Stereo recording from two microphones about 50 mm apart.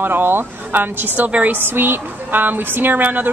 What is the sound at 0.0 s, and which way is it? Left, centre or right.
Speech, right.